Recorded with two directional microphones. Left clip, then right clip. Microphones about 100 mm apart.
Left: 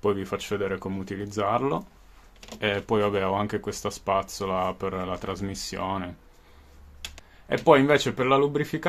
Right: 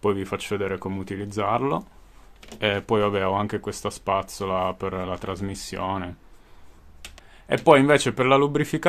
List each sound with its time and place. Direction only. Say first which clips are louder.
0.0 s speech: right 2 dB; 40° right (ahead or behind)
7.4 s speech: right 3 dB; 45° right (ahead or behind); by 8.8 s 75° right (ahead or behind)